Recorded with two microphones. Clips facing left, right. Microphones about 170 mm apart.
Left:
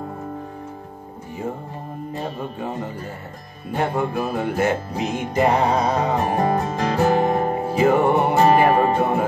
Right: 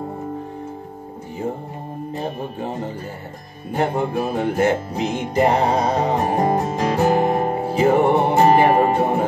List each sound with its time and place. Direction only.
2.2 s music: 30° right (ahead or behind)
6.5 s music: 20° right (ahead or behind)